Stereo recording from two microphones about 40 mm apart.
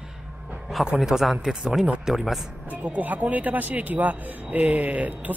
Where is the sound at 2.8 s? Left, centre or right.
Right.